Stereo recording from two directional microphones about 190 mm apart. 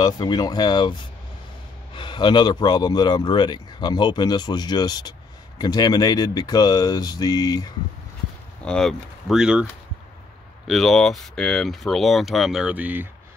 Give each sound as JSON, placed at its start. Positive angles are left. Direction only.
{"t": 0.0, "sound": "speech", "side_deg": 20}
{"t": 2.0, "sound": "speech", "side_deg": 25}
{"t": 8.6, "sound": "speech", "side_deg": 5}
{"t": 10.7, "sound": "speech", "side_deg": 0}